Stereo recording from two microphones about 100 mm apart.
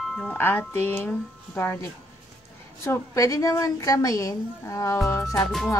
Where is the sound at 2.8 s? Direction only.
30° left (ahead or behind).